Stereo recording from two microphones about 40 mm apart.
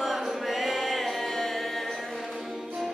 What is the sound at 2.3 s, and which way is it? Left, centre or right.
Music, centre.